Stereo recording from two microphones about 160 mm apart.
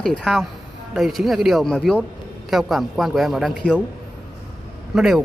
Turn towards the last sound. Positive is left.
turn(degrees=-5)  # may be behind; listen again after turning